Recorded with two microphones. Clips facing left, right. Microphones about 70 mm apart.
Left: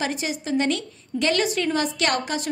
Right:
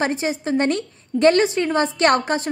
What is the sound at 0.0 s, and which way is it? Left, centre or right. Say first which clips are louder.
A woman's voice: right 5 dB; right.